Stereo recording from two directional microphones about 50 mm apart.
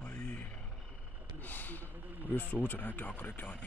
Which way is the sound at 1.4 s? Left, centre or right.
Left.